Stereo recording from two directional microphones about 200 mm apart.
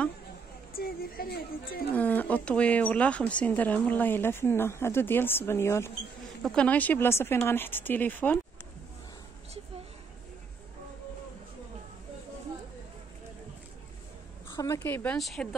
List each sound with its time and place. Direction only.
0.7 s speech: 50° left (ahead or behind)
1.9 s speech: 10° left (ahead or behind)
14.5 s speech: 15° left (ahead or behind)